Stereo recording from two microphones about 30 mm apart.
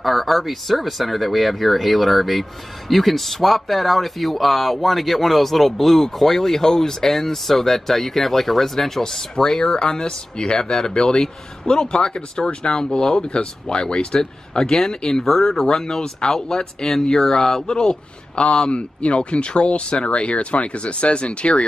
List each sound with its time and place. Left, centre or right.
0.0 s speech: centre
9.3 s a man's voice: left
15.2 s a man's voice: centre; by 21.6 s left